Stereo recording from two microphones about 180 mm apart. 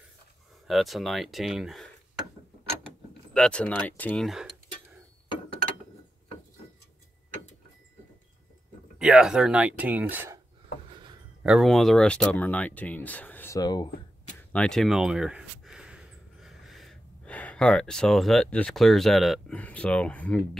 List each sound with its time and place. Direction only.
0.7 s speech: centre (ahead or behind)
3.3 s speech: 5° left (ahead or behind)
8.9 s speech: 5° right (ahead or behind)
10.9 s a sound: 25° right (ahead or behind)
11.4 s speech: centre (ahead or behind)
13.6 s speech: 20° left (ahead or behind)
14.5 s speech: 5° left (ahead or behind)